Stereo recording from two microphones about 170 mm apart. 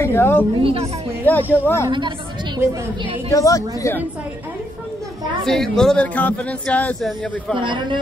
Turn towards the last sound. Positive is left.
turn(degrees=-30)  # may be behind; listen again after turning